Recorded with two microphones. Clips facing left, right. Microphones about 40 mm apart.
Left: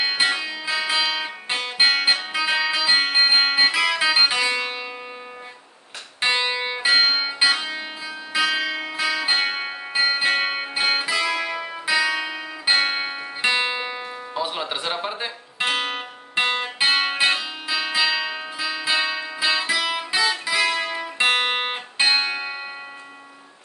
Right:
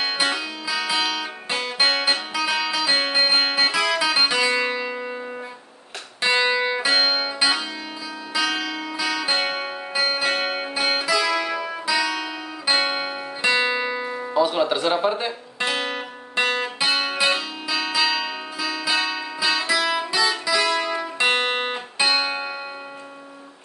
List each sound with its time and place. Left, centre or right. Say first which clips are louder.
0.0 s music: left 1 dB; centre
6.2 s music: right 2 dB; left
13.4 s music: right 2 dB; left
14.3 s music: right 7 dB; centre
15.6 s music: left 1 dB; left